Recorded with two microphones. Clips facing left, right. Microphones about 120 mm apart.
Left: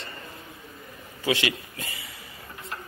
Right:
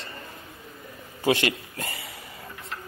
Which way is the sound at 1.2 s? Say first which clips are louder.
Right 3 dB; 45° right (ahead or behind).